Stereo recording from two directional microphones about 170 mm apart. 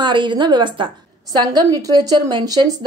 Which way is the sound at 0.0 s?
25° right (ahead or behind).